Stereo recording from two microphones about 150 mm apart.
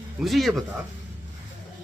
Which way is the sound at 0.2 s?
Centre (ahead or behind).